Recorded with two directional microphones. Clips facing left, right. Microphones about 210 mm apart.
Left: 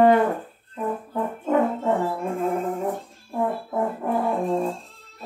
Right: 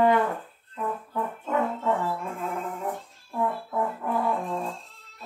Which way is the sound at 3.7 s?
30° left (ahead or behind).